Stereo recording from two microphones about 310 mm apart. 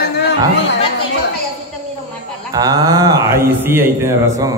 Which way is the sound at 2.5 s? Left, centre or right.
Centre.